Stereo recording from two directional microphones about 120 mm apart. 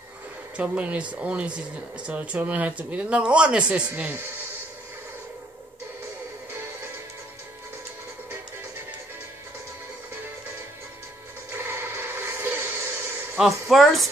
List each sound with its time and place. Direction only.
0.6 s speech: 10° right (ahead or behind)
11.5 s a sound: 20° right (ahead or behind)
13.7 s speech: centre (ahead or behind)